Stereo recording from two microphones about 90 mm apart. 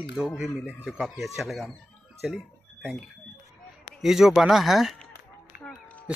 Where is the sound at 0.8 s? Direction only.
Centre (ahead or behind).